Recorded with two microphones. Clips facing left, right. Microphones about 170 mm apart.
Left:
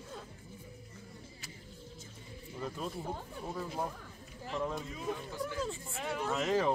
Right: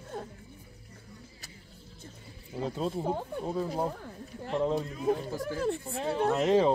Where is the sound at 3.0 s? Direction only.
60° right (ahead or behind).